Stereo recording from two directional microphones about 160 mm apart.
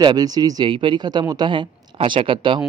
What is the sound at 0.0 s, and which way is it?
Speech, 25° right (ahead or behind).